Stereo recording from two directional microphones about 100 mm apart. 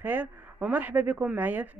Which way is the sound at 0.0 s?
20° right (ahead or behind).